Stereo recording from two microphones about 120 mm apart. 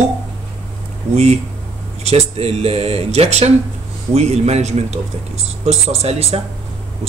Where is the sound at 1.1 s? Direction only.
65° right (ahead or behind).